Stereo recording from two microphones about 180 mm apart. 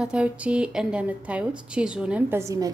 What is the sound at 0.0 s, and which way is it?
A woman's voice, 5° right (ahead or behind).